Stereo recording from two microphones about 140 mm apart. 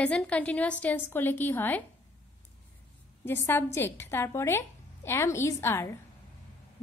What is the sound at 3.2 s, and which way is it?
A woman's voice, 15° left (ahead or behind).